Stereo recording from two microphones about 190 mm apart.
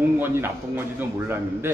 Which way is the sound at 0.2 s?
10° right (ahead or behind).